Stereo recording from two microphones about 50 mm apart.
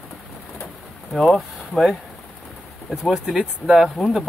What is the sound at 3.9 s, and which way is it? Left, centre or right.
Speech, centre.